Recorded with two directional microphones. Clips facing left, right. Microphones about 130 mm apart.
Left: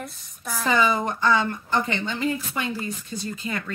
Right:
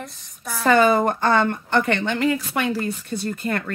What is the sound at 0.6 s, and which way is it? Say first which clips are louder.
Speech: right 6 dB; 60° right (ahead or behind).